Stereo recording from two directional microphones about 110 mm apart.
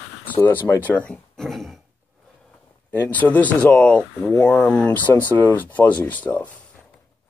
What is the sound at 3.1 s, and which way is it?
Speech, 15° left (ahead or behind).